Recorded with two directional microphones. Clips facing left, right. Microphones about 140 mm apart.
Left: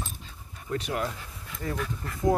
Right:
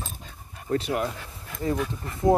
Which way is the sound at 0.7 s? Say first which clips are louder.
Right 6 dB; 40° right (ahead or behind).